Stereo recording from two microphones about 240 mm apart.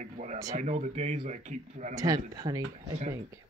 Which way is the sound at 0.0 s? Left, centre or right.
Right.